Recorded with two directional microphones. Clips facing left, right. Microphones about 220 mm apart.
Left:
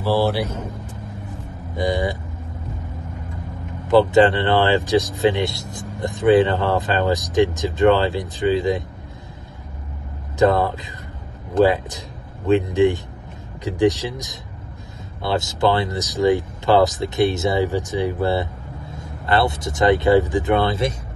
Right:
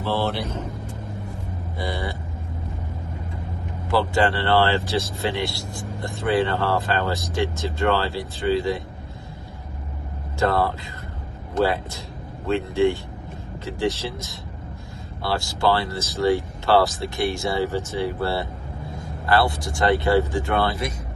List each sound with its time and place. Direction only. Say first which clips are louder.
0.0 s speech: left 5 dB; 10° left (ahead or behind)
1.8 s speech: left 8 dB; 15° left (ahead or behind)
3.9 s speech: left 7 dB; 20° left (ahead or behind)
10.4 s speech: left 5 dB; 20° left (ahead or behind)